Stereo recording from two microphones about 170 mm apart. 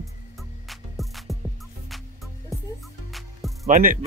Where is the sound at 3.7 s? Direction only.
55° right (ahead or behind).